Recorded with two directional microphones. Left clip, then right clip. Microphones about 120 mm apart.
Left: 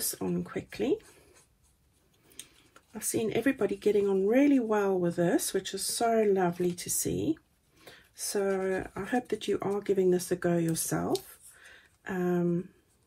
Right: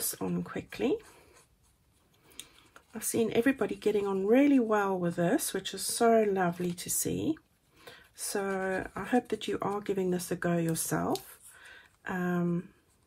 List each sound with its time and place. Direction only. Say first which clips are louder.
0.0 s speech: left 2 dB; 30° right (ahead or behind)
2.3 s speech: right 2 dB; 25° right (ahead or behind)
11.2 s a sound: right 1 dB; 25° right (ahead or behind)